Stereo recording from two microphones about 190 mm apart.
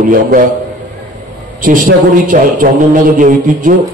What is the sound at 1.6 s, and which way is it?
A man's voice, 45° right (ahead or behind).